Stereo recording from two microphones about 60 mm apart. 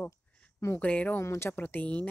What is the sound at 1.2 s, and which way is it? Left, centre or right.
Speech, left.